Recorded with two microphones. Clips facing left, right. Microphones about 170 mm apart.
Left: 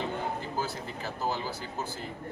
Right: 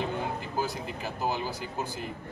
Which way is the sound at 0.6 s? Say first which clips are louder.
Right 2 dB; 15° right (ahead or behind).